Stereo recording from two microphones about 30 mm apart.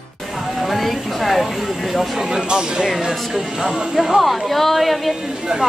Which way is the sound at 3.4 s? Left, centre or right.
Centre.